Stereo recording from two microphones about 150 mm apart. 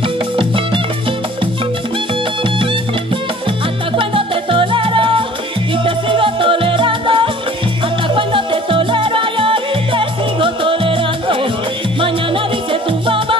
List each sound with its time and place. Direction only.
3.9 s music: 35° right (ahead or behind)